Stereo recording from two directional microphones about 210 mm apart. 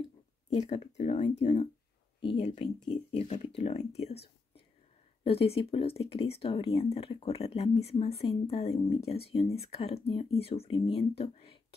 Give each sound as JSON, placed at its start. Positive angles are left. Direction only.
{"t": 0.5, "sound": "speech", "side_deg": 30}